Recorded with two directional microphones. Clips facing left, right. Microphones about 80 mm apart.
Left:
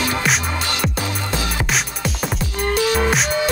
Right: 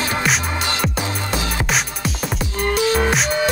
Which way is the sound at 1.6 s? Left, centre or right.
Centre.